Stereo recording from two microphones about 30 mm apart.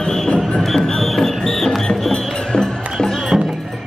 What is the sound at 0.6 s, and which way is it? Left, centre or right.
Music, centre.